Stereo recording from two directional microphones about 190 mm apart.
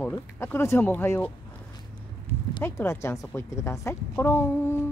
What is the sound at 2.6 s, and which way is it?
A woman's voice, 15° left (ahead or behind).